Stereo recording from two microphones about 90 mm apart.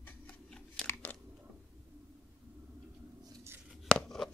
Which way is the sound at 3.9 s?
5° left (ahead or behind).